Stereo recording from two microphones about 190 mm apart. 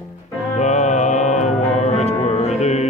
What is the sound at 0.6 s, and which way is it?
Music, 40° left (ahead or behind).